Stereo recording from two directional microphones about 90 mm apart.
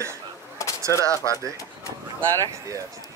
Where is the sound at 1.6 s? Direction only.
35° left (ahead or behind).